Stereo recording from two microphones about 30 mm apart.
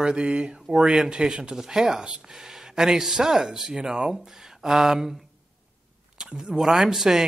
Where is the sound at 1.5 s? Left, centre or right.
Centre.